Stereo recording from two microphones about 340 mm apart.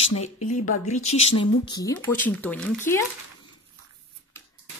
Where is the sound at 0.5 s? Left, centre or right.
Left.